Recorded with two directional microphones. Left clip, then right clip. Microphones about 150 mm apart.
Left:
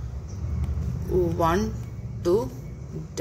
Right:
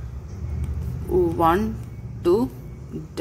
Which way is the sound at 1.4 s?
45° right (ahead or behind).